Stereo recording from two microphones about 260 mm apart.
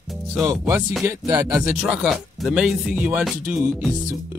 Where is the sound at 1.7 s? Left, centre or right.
Centre.